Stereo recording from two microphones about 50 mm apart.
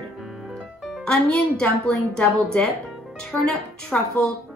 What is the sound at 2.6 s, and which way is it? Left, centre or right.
Music, left.